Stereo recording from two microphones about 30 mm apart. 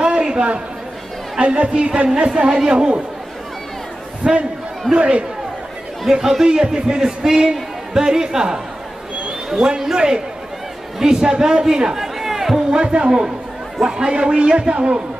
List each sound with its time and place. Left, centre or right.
0.0 s a sound: right
1.4 s a man's voice: right
4.2 s a man's voice: right
6.0 s a man's voice: centre
12.0 s music: centre
12.7 s a man's voice: right